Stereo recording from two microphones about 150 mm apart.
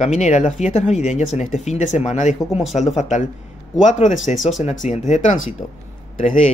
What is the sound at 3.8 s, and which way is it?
Speech, 55° left (ahead or behind).